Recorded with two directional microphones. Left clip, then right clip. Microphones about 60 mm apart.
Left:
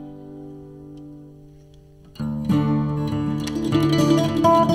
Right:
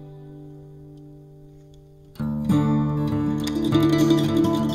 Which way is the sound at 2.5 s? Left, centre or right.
Left.